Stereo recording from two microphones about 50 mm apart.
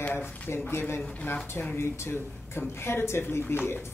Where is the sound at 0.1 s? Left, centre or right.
Left.